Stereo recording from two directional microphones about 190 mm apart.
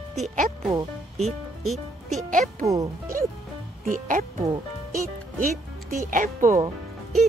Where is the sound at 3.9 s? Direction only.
45° right (ahead or behind).